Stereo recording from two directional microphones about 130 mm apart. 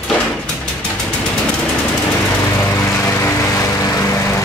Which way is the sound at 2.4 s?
20° left (ahead or behind).